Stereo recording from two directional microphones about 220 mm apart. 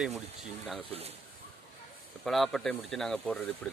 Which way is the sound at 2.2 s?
Centre (ahead or behind).